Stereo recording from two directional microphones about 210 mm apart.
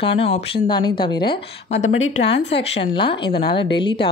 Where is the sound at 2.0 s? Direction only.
55° left (ahead or behind).